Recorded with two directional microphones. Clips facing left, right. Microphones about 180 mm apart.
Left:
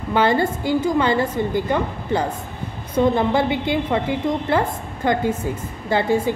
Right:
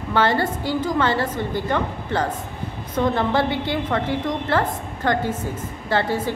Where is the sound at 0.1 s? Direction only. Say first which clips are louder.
Left 2 dB; 15° left (ahead or behind).